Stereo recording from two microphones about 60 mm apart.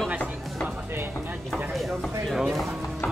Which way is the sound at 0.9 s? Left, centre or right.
Right.